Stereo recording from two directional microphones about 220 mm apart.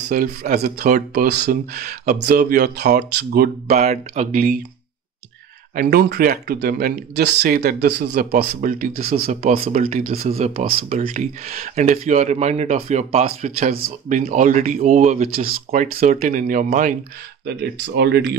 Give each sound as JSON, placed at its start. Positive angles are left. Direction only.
{"t": 0.1, "sound": "speech", "side_deg": -40}
{"t": 3.7, "sound": "speech", "side_deg": -30}
{"t": 5.8, "sound": "speech", "side_deg": -45}
{"t": 17.5, "sound": "speech", "side_deg": -50}